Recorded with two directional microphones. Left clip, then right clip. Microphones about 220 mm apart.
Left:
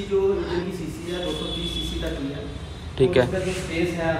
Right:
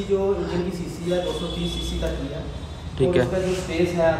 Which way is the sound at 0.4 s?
15° right (ahead or behind).